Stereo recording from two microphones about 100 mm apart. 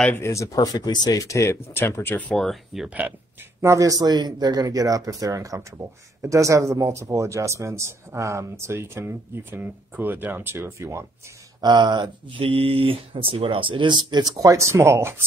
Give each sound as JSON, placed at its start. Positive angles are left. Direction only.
{"t": 0.2, "sound": "speech", "side_deg": 30}
{"t": 2.3, "sound": "speech", "side_deg": 5}
{"t": 3.6, "sound": "speech", "side_deg": -35}
{"t": 11.6, "sound": "speech", "side_deg": -45}
{"t": 14.4, "sound": "speech", "side_deg": -30}